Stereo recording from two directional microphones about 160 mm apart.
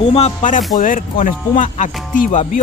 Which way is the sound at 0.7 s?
55° left (ahead or behind).